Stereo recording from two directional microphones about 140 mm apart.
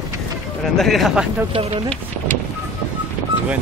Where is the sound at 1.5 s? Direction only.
45° right (ahead or behind).